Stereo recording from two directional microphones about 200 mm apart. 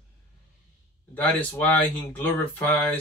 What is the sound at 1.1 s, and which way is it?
Speech, 10° left (ahead or behind).